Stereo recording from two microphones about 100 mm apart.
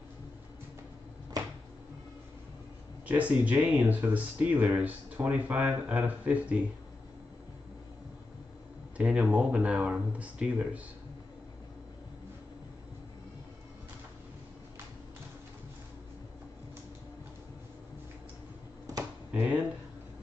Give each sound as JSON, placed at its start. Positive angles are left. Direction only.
{"t": 3.1, "sound": "speech", "side_deg": -15}
{"t": 8.9, "sound": "speech", "side_deg": -15}
{"t": 19.3, "sound": "speech", "side_deg": -15}